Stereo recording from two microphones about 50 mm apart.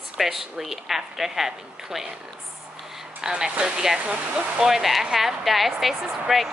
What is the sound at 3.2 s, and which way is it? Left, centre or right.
Speech, centre.